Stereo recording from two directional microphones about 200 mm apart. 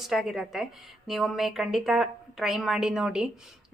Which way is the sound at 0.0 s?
Centre (ahead or behind).